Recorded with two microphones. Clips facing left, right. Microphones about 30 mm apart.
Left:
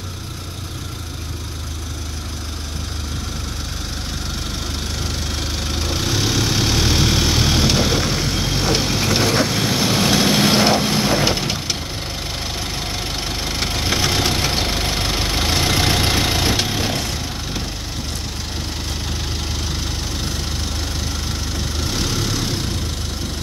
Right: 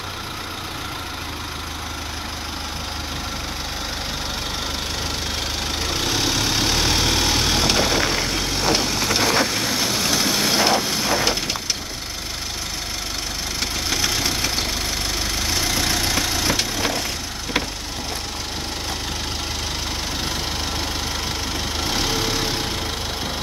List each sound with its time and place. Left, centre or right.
5.7 s vehicle: centre
9.8 s vehicle: centre
13.6 s engine: centre
16.4 s vehicle: centre
21.5 s vehicle: centre